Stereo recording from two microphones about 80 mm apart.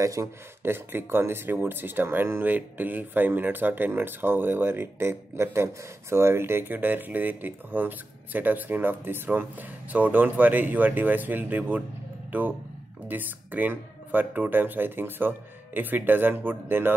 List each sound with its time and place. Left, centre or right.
0.0 s speech: right